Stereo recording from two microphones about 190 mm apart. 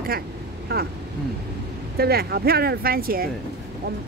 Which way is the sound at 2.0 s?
55° right (ahead or behind).